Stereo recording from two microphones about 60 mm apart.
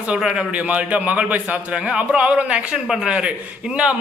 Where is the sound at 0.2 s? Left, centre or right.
Centre.